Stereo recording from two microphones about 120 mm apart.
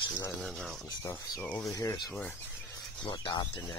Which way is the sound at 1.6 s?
25° left (ahead or behind).